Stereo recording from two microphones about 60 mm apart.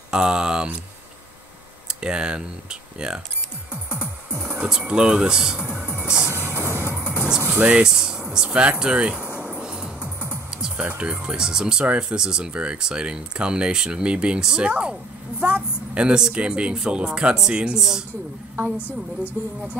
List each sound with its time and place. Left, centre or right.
0.1 s speech: centre
1.9 s speech: centre
3.7 s music: centre
4.5 s speech: centre
6.3 s music: right
7.0 s music: centre
7.5 s speech: centre
9.2 s music: centre
11.0 s speech: centre
18.8 s a woman's voice: left